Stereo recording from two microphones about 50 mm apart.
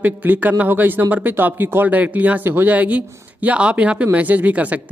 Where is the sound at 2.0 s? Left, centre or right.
Right.